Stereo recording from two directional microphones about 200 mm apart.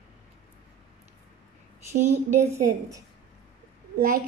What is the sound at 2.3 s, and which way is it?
Speech, 15° right (ahead or behind).